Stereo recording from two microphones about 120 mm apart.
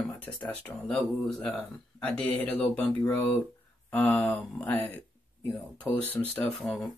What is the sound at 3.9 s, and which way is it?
Speech, 15° left (ahead or behind).